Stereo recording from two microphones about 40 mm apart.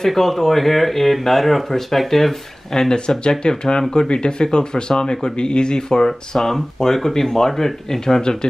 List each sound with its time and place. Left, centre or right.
0.0 s speech: centre